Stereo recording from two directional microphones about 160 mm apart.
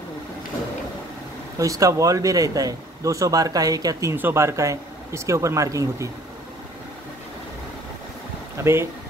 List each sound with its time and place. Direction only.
1.6 s speech: 20° right (ahead or behind)
8.5 s speech: 15° right (ahead or behind)